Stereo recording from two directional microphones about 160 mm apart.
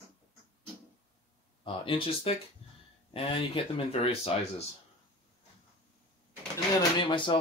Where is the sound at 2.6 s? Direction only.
40° left (ahead or behind).